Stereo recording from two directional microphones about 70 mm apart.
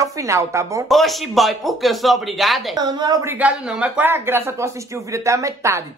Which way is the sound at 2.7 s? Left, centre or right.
Right.